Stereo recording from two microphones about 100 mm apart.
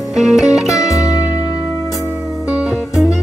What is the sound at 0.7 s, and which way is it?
Music, 30° left (ahead or behind).